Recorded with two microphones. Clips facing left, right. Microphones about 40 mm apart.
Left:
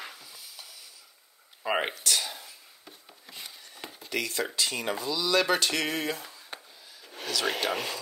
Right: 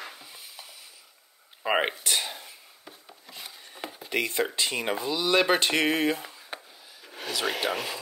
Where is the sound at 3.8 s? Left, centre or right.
Centre.